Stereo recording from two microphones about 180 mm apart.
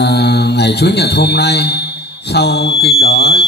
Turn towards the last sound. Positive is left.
turn(degrees=65)  # may be behind; listen again after turning